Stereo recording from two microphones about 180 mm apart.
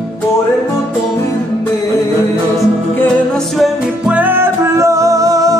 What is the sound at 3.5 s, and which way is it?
Music, 5° right (ahead or behind).